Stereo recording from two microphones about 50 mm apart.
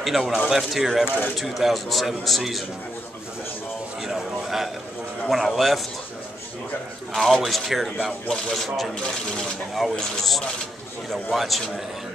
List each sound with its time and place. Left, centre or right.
0.0 s a man's voice: centre
4.0 s a sound: centre
5.3 s a man's voice: centre
7.2 s a man's voice: centre
9.0 s speech: centre
9.9 s a man's voice: centre